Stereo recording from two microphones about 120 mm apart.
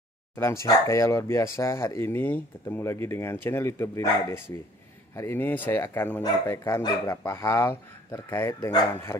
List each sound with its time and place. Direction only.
0.4 s speech: 20° left (ahead or behind)